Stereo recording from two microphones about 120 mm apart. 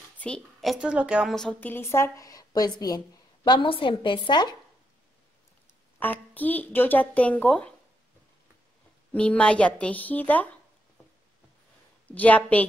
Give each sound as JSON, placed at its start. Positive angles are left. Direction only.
{"t": 0.2, "sound": "a woman's voice", "side_deg": 5}
{"t": 1.3, "sound": "a woman's voice", "side_deg": 5}
{"t": 1.6, "sound": "a woman's voice", "side_deg": 20}
{"t": 3.4, "sound": "a woman's voice", "side_deg": 45}
{"t": 5.9, "sound": "a woman's voice", "side_deg": 15}
{"t": 9.1, "sound": "a woman's voice", "side_deg": 10}
{"t": 12.1, "sound": "a woman's voice", "side_deg": 15}